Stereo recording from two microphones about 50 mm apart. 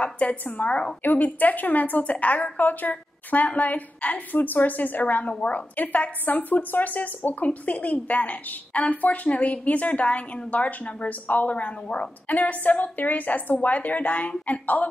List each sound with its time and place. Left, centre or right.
0.0 s a woman's voice: left